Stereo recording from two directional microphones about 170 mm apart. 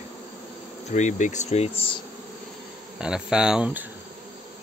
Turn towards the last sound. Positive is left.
turn(degrees=-5)  # may be behind; listen again after turning